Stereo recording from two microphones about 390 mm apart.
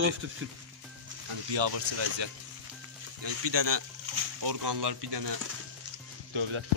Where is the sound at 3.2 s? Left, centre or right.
Right.